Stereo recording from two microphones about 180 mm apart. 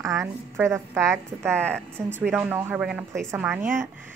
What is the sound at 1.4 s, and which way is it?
Speech, 5° left (ahead or behind).